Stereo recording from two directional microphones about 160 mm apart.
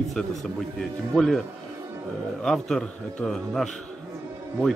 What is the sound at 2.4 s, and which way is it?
A man's voice, centre (ahead or behind).